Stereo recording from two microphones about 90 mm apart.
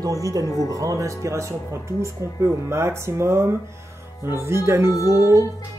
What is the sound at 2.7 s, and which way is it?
Speech, 30° right (ahead or behind).